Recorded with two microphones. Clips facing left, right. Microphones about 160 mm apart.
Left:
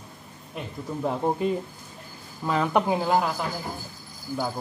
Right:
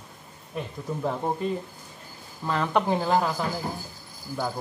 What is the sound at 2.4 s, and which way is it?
Speech, 10° left (ahead or behind).